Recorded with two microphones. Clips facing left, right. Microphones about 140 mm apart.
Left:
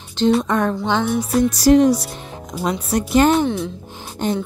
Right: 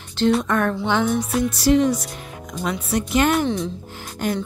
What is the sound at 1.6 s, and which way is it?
Speech, 40° left (ahead or behind).